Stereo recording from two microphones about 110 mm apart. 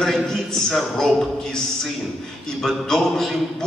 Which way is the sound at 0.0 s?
5° left (ahead or behind).